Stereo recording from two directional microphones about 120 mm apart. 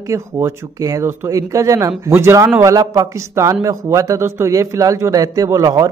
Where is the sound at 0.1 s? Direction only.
25° right (ahead or behind).